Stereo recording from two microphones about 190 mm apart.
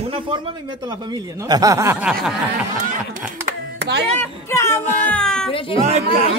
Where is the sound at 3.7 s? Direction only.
65° right (ahead or behind).